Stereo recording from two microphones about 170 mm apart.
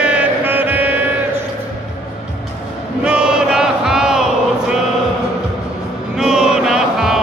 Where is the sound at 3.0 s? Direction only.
5° right (ahead or behind).